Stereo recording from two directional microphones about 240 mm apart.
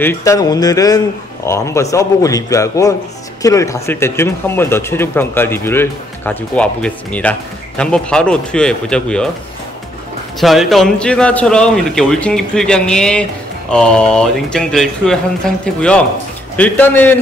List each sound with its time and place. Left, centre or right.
0.0 s speech: centre
10.4 s speech: centre